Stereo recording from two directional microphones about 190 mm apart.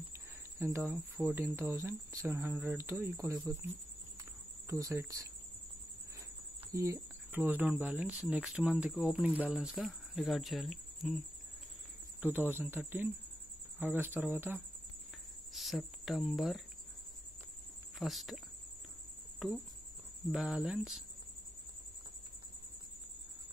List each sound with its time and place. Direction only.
0.6 s speech: 15° right (ahead or behind)
4.6 s speech: 15° right (ahead or behind)
6.7 s speech: 15° right (ahead or behind); by 11.1 s centre (ahead or behind)
12.2 s speech: 10° right (ahead or behind)
17.9 s speech: centre (ahead or behind)
20.2 s speech: 5° right (ahead or behind)